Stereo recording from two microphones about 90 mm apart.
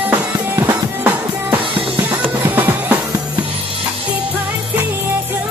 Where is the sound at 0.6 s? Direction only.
25° right (ahead or behind).